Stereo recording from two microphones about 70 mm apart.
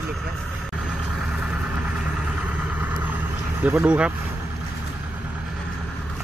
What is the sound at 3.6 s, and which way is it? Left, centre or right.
Speech, right.